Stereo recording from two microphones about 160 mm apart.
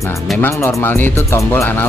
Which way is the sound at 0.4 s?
15° left (ahead or behind).